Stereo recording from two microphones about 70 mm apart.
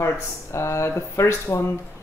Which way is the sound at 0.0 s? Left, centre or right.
Left.